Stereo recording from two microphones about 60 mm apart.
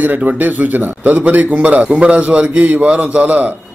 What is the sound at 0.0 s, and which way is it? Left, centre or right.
A man's voice, right.